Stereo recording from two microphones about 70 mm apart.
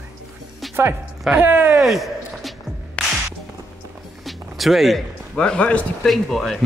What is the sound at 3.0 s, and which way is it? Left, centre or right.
Music, centre.